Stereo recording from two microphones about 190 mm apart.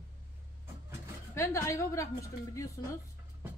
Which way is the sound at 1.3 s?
15° left (ahead or behind).